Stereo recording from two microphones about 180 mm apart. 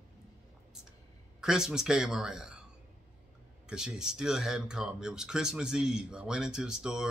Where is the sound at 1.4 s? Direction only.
5° right (ahead or behind).